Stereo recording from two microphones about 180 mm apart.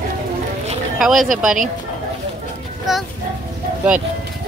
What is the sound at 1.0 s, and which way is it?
Speech, centre (ahead or behind).